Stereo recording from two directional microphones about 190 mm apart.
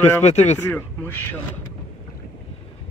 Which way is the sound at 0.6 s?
10° left (ahead or behind).